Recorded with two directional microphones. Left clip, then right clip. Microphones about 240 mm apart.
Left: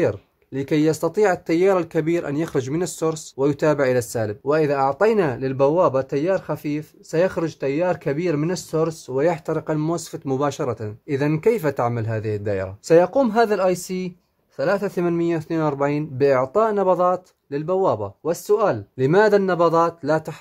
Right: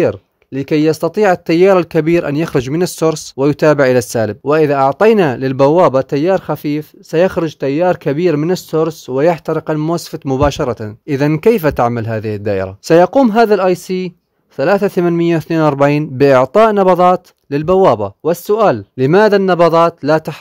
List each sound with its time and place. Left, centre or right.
0.0 s speech: right